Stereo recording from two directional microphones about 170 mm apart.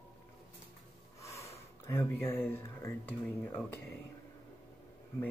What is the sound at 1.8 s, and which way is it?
Speech, 15° left (ahead or behind).